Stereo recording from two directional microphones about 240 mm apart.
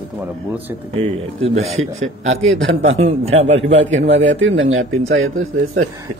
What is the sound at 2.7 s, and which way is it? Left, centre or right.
Speech, right.